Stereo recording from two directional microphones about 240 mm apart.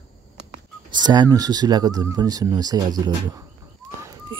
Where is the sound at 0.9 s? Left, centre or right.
Centre.